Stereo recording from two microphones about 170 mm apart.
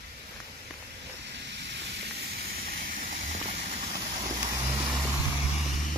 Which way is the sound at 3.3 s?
35° right (ahead or behind).